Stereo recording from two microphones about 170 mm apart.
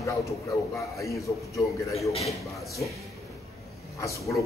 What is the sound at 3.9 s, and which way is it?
Speech, 20° left (ahead or behind).